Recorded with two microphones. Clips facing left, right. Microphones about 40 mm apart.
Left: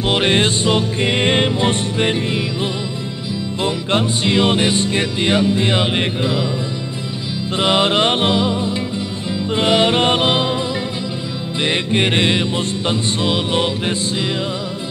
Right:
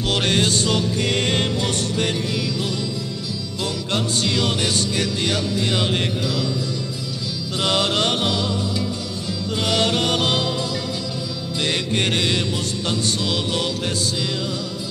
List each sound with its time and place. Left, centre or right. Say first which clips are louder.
0.0 s music: left 4 dB; left
7.5 s music: left 5 dB; left
11.6 s music: left 5 dB; left